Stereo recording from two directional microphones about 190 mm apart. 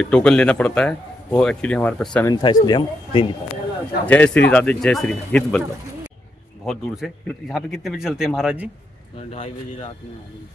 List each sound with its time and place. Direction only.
0.0 s a man's voice: 5° left (ahead or behind)
2.3 s speech: 20° left (ahead or behind)
4.0 s speech: 10° left (ahead or behind)
6.6 s a man's voice: centre (ahead or behind)
9.3 s speech: 30° left (ahead or behind)